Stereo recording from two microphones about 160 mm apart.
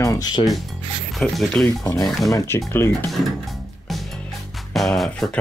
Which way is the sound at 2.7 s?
15° left (ahead or behind).